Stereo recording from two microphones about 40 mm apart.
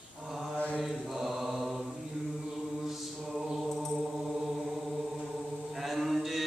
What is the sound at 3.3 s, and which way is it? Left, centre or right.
Mantra, centre.